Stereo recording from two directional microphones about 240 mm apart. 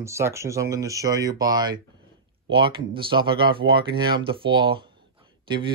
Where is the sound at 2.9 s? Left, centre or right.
Right.